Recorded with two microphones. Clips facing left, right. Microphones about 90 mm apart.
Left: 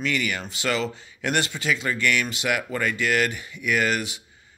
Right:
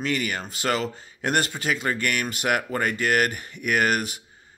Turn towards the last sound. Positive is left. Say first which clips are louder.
# right 1 dB
turn(degrees=-45)  # may be behind; listen again after turning